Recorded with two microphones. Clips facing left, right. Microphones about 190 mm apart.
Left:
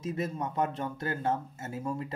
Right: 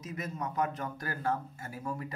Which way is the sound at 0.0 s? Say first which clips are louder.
Left 5 dB; 30° left (ahead or behind).